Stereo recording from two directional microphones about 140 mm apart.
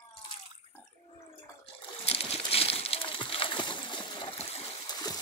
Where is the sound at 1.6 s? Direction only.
45° left (ahead or behind).